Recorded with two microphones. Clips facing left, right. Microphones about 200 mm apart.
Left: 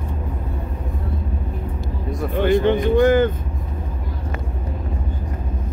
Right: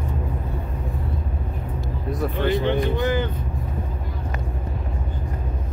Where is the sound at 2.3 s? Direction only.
50° left (ahead or behind).